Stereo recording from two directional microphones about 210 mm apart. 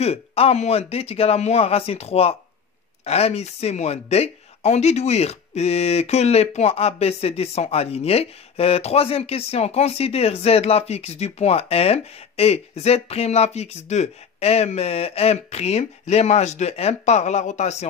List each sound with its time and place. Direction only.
0.0 s speech: 30° left (ahead or behind)